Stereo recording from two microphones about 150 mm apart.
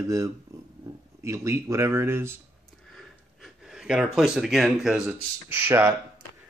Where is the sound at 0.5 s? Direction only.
20° right (ahead or behind).